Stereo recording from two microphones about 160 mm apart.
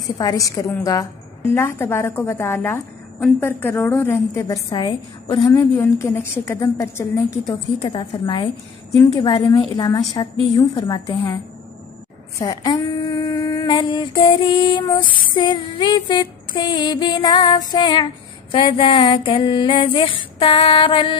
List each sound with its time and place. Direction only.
0.0 s a woman's voice: 20° left (ahead or behind)
4.6 s a woman's voice: 30° left (ahead or behind)
12.4 s female singing: 20° left (ahead or behind)